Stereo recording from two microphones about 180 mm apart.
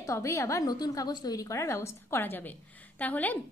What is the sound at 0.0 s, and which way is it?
A woman's voice, 15° left (ahead or behind).